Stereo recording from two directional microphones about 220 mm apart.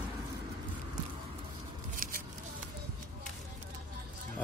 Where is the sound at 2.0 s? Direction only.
40° right (ahead or behind).